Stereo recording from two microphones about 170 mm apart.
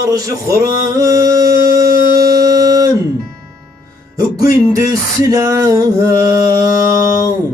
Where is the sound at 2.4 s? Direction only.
20° right (ahead or behind).